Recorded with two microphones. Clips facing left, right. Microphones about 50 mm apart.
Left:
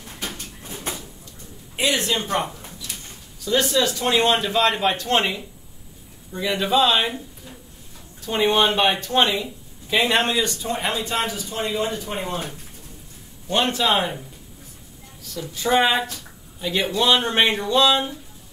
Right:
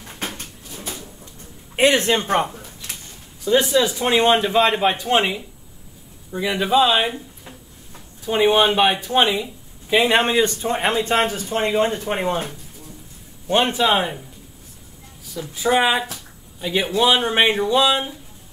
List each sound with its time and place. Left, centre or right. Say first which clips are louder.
1.8 s speech: right 6 dB; right
2.8 s pigeon: right 1 dB; right
3.4 s a man's voice: right 3 dB; centre
8.3 s speech: right 3 dB; centre
10.3 s speech: right 5 dB; right
13.5 s speech: right 3 dB; right
15.5 s speech: right 1 dB; centre